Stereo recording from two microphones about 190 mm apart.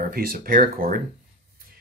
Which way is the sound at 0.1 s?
50° right (ahead or behind).